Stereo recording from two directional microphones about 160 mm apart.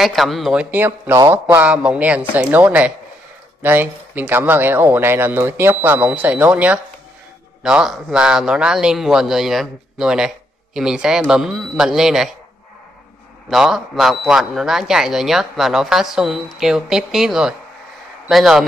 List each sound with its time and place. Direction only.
0.0 s a man's voice: centre (ahead or behind)
13.5 s a man's voice: centre (ahead or behind)